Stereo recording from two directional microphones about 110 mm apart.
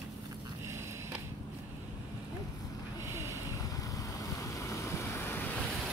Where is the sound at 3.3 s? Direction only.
30° left (ahead or behind).